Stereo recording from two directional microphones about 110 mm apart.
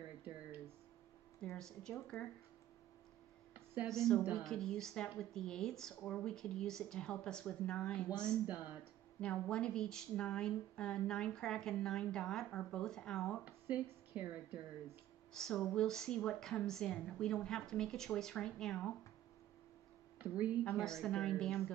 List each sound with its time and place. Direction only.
1.6 s a woman's voice: 5° left (ahead or behind)
3.9 s a woman's voice: 5° left (ahead or behind)
8.5 s speech: 15° right (ahead or behind)
9.2 s a woman's voice: 10° left (ahead or behind)
13.5 s speech: 15° right (ahead or behind)
15.3 s a woman's voice: 5° left (ahead or behind)
20.2 s speech: 15° right (ahead or behind)
20.8 s a woman's voice: 5° left (ahead or behind)